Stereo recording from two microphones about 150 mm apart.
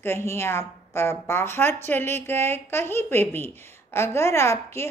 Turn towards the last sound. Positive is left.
turn(degrees=15)  # may be behind; listen again after turning